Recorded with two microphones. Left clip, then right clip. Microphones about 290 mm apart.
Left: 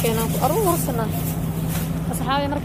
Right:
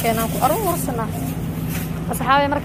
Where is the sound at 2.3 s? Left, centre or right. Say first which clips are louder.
Right 7 dB; centre.